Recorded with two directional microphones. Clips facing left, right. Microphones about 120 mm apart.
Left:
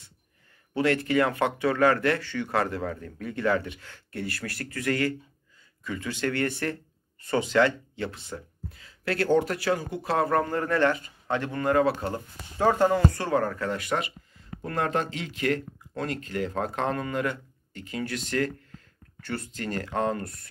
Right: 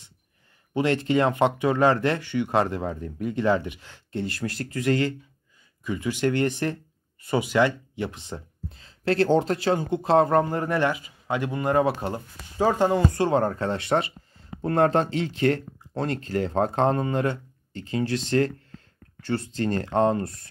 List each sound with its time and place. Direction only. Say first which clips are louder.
0.7 s speech: right 1 dB; 20° right (ahead or behind)